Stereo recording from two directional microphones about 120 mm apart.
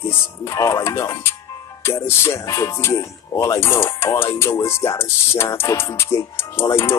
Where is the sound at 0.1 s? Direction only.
25° left (ahead or behind).